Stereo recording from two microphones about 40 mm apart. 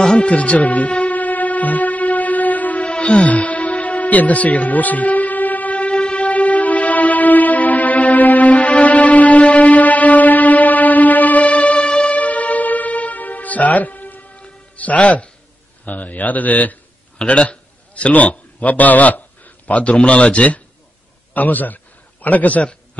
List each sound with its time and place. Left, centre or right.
0.2 s music: left
2.9 s music: left
3.3 s music: left
5.9 s music: left
6.2 s music: left
12.2 s music: left
14.8 s speech: left
17.3 s a sound: left
19.8 s speech: left
21.3 s a man's voice: left